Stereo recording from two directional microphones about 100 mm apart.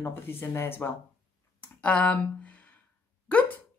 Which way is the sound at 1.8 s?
15° left (ahead or behind).